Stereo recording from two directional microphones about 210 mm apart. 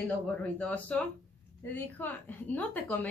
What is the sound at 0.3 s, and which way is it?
Speech, 5° left (ahead or behind).